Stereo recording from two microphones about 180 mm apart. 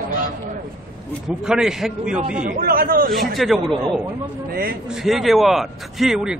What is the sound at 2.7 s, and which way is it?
Speech, 55° right (ahead or behind).